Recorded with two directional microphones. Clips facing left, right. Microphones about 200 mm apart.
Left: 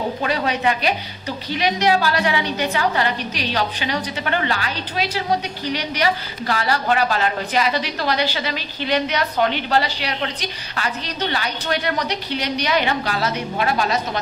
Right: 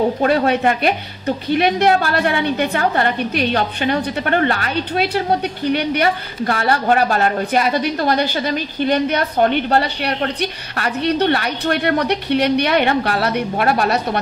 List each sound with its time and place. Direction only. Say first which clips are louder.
0.2 s a woman's voice: right 6 dB; 50° right (ahead or behind)